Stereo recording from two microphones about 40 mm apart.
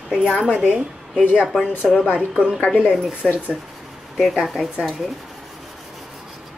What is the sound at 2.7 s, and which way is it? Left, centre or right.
Speech, right.